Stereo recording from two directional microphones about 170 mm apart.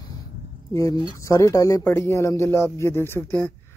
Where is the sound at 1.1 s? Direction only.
20° left (ahead or behind).